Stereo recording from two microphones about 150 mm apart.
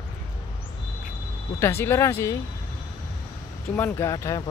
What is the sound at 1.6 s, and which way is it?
Speech, 15° left (ahead or behind).